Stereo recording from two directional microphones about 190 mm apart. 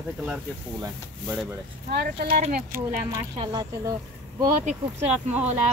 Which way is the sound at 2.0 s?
55° right (ahead or behind).